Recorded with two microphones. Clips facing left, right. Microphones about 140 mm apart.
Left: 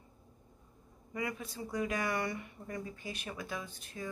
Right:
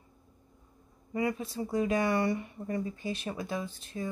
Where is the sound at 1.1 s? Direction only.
30° right (ahead or behind).